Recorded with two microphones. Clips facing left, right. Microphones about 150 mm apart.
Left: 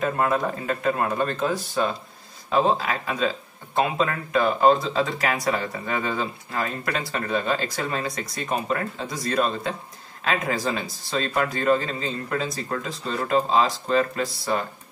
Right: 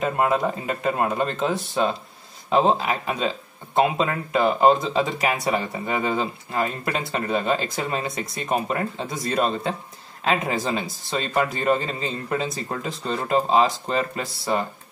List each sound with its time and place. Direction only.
0.0 s speech: 20° right (ahead or behind)